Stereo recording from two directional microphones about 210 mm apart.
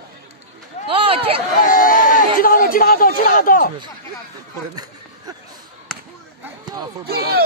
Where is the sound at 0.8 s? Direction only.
25° right (ahead or behind).